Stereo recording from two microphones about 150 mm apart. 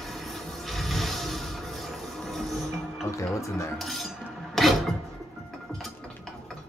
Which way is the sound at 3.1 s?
20° left (ahead or behind).